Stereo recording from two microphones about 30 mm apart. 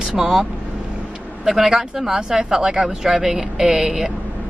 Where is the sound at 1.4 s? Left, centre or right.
Right.